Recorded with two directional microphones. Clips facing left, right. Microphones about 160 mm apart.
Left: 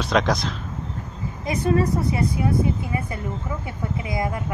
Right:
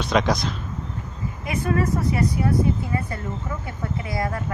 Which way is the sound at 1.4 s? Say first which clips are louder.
Left 3 dB; 35° left (ahead or behind).